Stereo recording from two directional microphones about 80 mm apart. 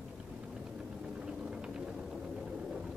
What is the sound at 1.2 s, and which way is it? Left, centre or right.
Vehicle, centre.